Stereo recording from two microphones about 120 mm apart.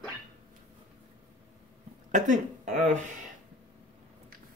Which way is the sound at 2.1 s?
90° right.